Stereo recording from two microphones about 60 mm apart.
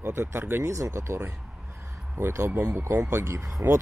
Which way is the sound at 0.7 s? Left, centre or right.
Right.